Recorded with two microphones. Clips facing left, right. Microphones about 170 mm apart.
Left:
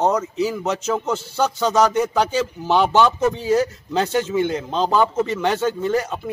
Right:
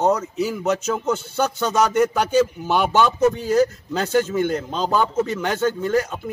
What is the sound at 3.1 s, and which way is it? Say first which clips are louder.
Speech: right 1 dB; centre (ahead or behind).